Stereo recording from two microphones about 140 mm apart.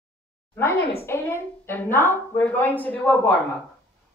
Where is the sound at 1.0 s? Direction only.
15° left (ahead or behind).